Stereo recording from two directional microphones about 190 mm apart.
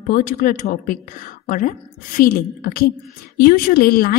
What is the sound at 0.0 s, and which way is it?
A woman's voice, 45° left (ahead or behind).